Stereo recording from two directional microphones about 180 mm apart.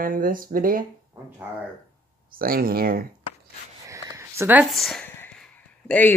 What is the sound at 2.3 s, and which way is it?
Speech, 55° right (ahead or behind).